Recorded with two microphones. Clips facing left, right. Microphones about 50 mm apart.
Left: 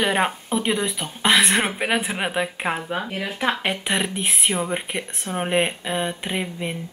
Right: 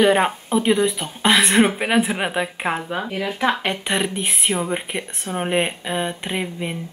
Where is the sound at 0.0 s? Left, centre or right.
Centre.